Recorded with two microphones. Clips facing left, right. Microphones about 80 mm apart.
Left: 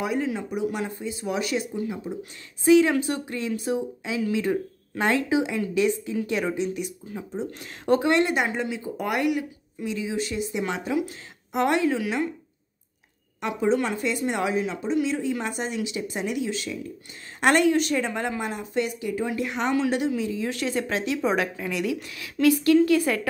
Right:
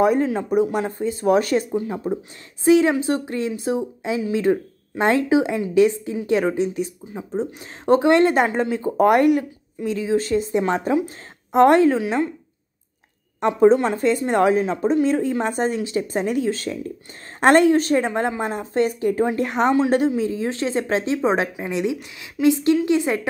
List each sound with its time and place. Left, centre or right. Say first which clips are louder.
0.0 s speech: right 8 dB; right
7.1 s speech: right 3 dB; centre
7.6 s speech: right 5 dB; right
13.4 s speech: right 8 dB; right